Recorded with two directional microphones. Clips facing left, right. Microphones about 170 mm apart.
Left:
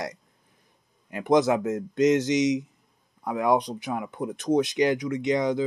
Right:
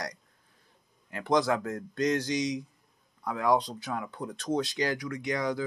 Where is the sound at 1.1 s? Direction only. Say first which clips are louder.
Left 5 dB; 20° left (ahead or behind).